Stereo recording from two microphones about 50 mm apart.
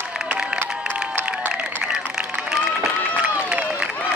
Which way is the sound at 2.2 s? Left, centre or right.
Centre.